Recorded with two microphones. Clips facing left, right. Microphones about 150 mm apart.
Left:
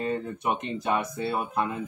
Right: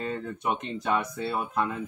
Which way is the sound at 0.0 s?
10° left (ahead or behind).